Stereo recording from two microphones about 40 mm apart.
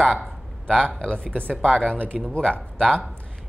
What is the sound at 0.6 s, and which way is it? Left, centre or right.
Speech, left.